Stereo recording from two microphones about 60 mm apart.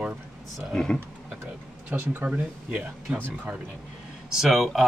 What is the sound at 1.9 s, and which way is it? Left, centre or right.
Speech, right.